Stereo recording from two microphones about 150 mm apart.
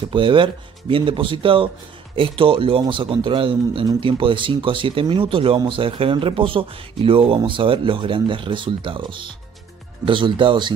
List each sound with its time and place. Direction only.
0.1 s speech: 35° right (ahead or behind)